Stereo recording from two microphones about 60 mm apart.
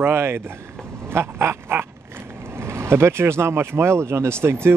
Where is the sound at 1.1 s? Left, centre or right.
Right.